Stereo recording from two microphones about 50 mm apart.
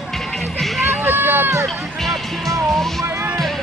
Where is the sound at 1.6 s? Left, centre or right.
Centre.